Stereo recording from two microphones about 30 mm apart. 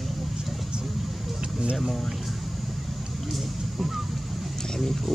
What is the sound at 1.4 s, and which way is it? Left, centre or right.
Vehicle, right.